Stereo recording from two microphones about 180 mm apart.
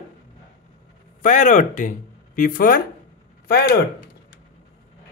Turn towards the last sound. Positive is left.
turn(degrees=60)  # may be behind; listen again after turning